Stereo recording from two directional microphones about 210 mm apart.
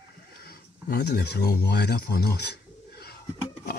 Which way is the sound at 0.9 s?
50° left (ahead or behind).